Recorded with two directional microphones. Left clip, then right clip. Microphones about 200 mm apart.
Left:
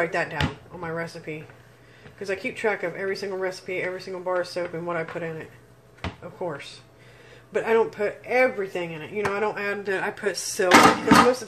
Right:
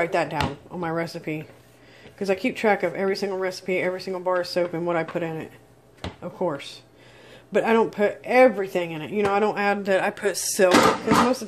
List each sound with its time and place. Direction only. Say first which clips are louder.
0.0 s speech: right 2 dB; 40° right (ahead or behind)